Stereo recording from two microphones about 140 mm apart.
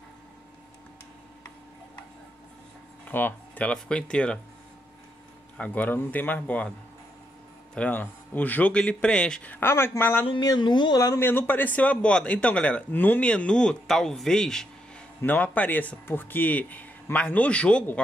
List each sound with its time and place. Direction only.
3.1 s a man's voice: 15° left (ahead or behind)
5.6 s a man's voice: 10° left (ahead or behind)
7.7 s a man's voice: 10° left (ahead or behind)
10.2 s speech: 30° left (ahead or behind)
11.1 s a man's voice: 15° left (ahead or behind)